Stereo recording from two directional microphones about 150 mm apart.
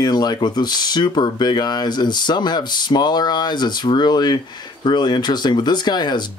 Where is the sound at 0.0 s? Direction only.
25° left (ahead or behind).